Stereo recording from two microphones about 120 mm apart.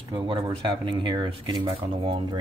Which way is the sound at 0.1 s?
45° right (ahead or behind).